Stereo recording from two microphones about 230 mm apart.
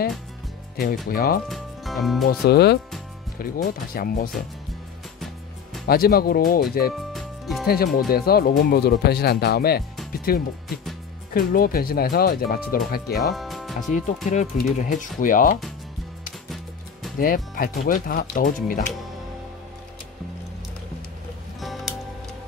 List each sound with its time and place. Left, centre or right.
0.7 s speech: left
1.5 s speech: centre
2.4 s speech: left
5.9 s speech: left
6.9 s music: centre
7.6 s speech: left
13.3 s music: centre
13.9 s speech: left
17.2 s speech: left
21.5 s music: centre